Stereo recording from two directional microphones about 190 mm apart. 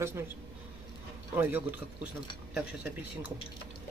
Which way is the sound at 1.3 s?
10° right (ahead or behind).